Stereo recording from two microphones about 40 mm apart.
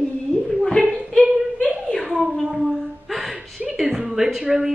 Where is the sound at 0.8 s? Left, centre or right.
Left.